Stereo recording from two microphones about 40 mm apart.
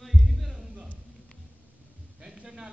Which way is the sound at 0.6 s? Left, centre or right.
Centre.